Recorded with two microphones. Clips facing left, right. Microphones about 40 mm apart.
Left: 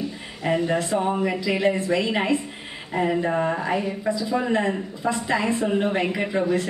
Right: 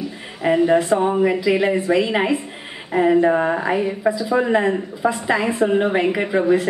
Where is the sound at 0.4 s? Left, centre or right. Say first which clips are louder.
Right 7 dB; centre.